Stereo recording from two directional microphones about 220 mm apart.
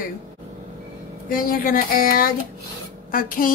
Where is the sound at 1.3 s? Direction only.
40° left (ahead or behind).